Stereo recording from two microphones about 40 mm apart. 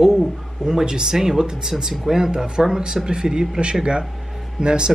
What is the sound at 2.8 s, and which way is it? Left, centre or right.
Speech, centre.